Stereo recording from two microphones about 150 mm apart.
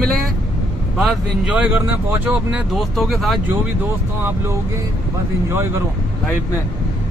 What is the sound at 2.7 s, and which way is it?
Speech, centre (ahead or behind).